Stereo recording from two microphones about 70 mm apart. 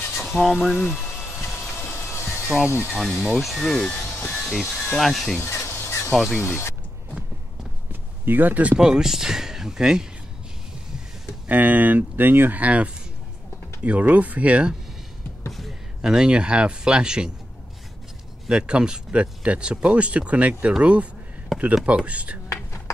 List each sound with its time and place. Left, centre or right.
0.1 s speech: centre
1.4 s vehicle: left
2.9 s speech: centre
5.4 s fowl: left
6.1 s speech: centre
6.4 s speech: left
7.9 s a sound: right
8.7 s speech: centre
11.4 s speech: right
16.0 s speech: centre
18.5 s speech: centre